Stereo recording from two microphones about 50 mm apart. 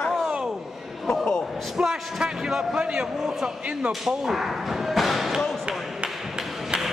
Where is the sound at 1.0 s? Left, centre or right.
Centre.